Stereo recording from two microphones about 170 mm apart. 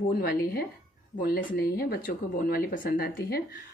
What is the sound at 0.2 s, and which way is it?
Speech, 60° left (ahead or behind).